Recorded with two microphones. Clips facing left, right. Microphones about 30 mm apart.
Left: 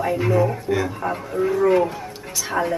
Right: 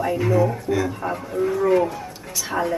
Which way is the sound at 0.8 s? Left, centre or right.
Centre.